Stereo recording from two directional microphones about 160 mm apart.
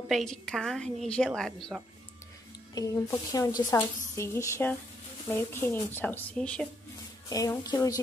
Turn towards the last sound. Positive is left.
turn(degrees=25)  # may be behind; listen again after turning